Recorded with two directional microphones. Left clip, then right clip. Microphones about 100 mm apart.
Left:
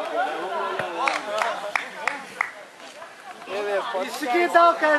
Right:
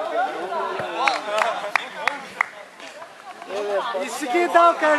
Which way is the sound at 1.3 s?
20° right (ahead or behind).